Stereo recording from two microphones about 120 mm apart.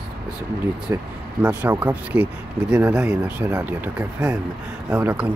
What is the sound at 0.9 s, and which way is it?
Speech, 20° right (ahead or behind).